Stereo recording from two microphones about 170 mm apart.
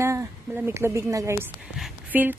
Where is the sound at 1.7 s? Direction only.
5° right (ahead or behind).